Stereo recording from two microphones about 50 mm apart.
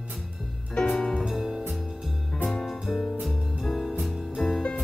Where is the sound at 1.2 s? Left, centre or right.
Centre.